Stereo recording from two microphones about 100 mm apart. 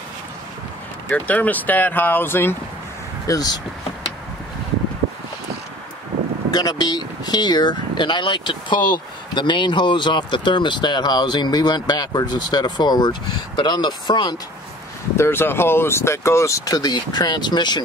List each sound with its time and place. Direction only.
1.0 s speech: 15° left (ahead or behind)
3.3 s speech: 40° left (ahead or behind)
6.5 s speech: 40° left (ahead or behind)
15.1 s speech: 25° left (ahead or behind); by 17.8 s 45° left (ahead or behind)